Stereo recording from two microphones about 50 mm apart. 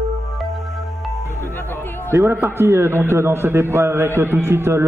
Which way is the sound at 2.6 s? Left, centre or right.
Right.